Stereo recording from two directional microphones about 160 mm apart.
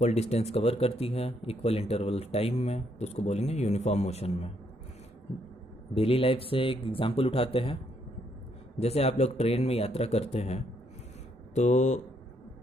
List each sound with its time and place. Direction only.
0.0 s speech: 45° left (ahead or behind)
5.9 s speech: 35° left (ahead or behind)